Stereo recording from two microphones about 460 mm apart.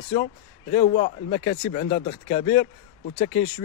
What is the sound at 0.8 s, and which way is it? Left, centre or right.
A man's voice, centre.